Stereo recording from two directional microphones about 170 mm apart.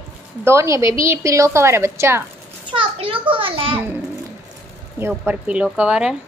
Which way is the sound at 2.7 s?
30° right (ahead or behind).